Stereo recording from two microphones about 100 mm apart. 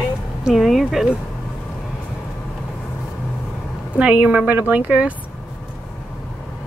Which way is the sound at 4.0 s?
15° right (ahead or behind).